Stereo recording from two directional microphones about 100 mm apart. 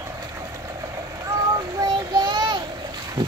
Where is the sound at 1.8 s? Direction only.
45° right (ahead or behind).